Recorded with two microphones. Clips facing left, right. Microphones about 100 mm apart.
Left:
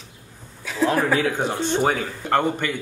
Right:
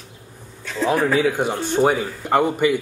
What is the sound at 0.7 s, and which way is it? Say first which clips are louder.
A man's voice: right 1 dB; centre (ahead or behind).